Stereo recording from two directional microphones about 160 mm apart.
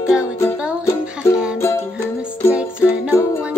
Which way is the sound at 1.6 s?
15° left (ahead or behind).